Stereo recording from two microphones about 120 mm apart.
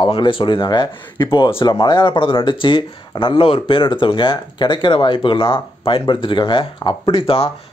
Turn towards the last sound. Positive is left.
turn(degrees=45)  # may be behind; listen again after turning